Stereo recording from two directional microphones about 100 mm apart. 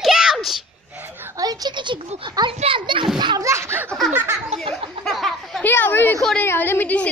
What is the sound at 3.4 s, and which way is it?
Speech, 25° right (ahead or behind).